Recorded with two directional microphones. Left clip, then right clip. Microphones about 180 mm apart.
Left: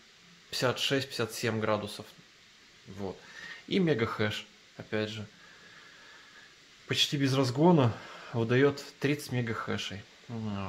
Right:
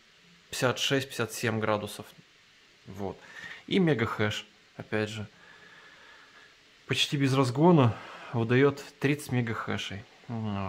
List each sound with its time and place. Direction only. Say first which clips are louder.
0.5 s speech: right 2 dB; 20° right (ahead or behind)
6.9 s speech: right 1 dB; 25° right (ahead or behind)